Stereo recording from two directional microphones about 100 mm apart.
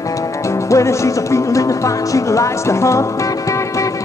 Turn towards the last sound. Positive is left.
turn(degrees=30)  # may be behind; listen again after turning